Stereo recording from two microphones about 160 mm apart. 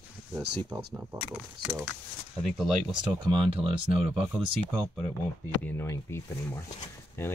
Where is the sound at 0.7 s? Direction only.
10° right (ahead or behind).